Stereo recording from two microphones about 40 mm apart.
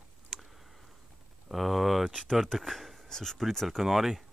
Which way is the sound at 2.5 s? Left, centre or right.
Centre.